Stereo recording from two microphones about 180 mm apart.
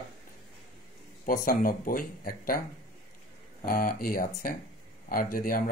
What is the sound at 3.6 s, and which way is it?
Speech, 50° left (ahead or behind).